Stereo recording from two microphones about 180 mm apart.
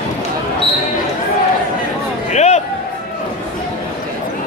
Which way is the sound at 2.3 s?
40° left (ahead or behind).